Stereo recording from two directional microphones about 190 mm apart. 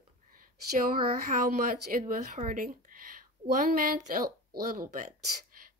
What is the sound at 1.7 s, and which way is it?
Speech, 50° right (ahead or behind).